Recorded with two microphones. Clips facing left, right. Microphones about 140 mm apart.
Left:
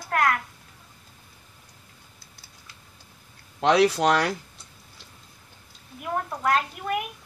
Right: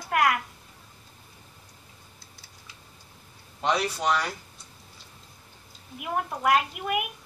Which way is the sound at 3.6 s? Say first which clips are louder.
Left 7 dB; 85° left.